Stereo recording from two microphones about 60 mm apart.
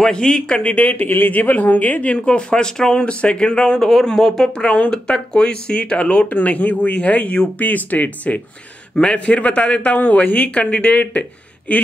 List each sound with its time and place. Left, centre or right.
0.0 s speech: centre
0.7 s speech: left
8.9 s speech: centre